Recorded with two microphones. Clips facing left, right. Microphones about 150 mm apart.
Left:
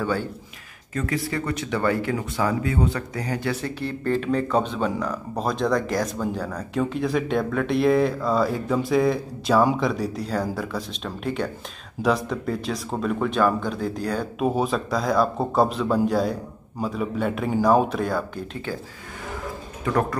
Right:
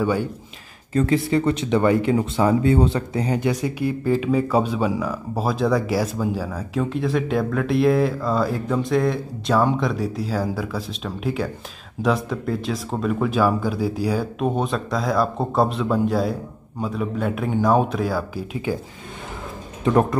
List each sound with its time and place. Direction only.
0.0 s speech: 15° right (ahead or behind)
0.9 s speech: 25° right (ahead or behind); by 14.2 s 10° right (ahead or behind)
14.4 s speech: 5° left (ahead or behind)
19.8 s speech: 25° right (ahead or behind)